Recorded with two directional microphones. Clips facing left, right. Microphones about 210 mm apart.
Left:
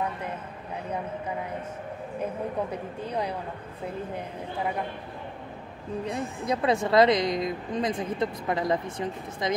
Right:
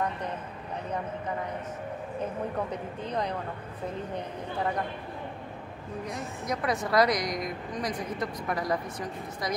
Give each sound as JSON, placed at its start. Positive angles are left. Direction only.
{"t": 2.7, "sound": "speech", "side_deg": 10}
{"t": 6.0, "sound": "a woman's voice", "side_deg": 30}